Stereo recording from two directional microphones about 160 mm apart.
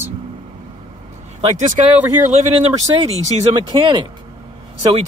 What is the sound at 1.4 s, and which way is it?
Speech, 45° right (ahead or behind).